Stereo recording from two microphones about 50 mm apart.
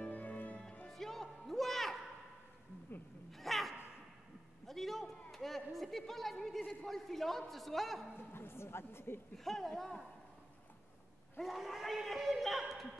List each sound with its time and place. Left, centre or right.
0.0 s music: left
0.8 s music: centre
3.3 s dog: centre
4.6 s a sound: centre
5.7 s a man's voice: centre
8.2 s speech: left
9.4 s a man's voice: centre
11.4 s speech: centre